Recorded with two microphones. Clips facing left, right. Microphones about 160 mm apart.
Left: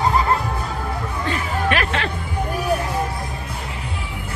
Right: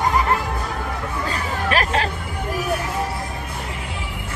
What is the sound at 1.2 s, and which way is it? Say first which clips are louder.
Chatter: left 3 dB; 35° right (ahead or behind).